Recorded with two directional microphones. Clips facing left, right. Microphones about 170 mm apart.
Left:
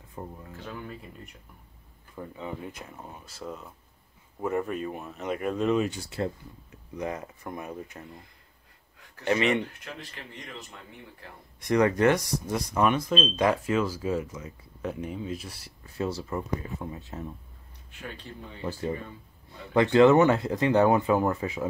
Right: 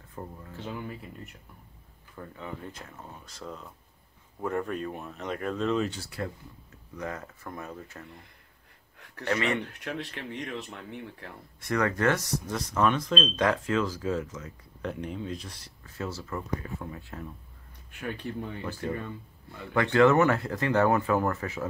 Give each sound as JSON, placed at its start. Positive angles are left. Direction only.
{"t": 0.1, "sound": "speech", "side_deg": 15}
{"t": 0.8, "sound": "speech", "side_deg": 0}
{"t": 2.1, "sound": "speech", "side_deg": 15}
{"t": 6.0, "sound": "speech", "side_deg": 25}
{"t": 9.2, "sound": "speech", "side_deg": 20}
{"t": 9.7, "sound": "speech", "side_deg": -65}
{"t": 11.6, "sound": "speech", "side_deg": 20}
{"t": 16.0, "sound": "speech", "side_deg": 20}
{"t": 18.0, "sound": "speech", "side_deg": -55}
{"t": 19.7, "sound": "speech", "side_deg": 20}